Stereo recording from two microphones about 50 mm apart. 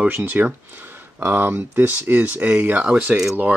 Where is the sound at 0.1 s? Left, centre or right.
Right.